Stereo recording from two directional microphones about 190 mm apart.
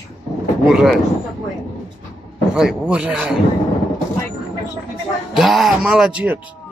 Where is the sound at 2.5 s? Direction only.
5° right (ahead or behind).